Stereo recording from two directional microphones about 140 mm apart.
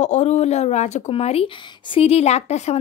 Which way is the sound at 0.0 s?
55° left (ahead or behind).